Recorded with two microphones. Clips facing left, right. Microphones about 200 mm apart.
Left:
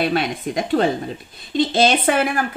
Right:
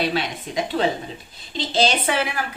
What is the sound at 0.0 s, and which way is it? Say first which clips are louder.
A woman's voice: left 4 dB; 55° left (ahead or behind).